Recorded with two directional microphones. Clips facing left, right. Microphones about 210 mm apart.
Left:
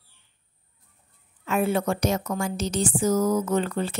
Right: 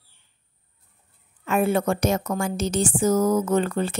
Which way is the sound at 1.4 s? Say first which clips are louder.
Right 2 dB; 50° right (ahead or behind).